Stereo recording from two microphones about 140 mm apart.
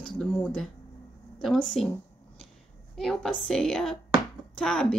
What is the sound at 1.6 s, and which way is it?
Speech, 5° left (ahead or behind).